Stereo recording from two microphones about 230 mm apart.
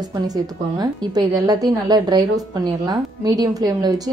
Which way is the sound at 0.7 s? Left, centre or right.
Centre.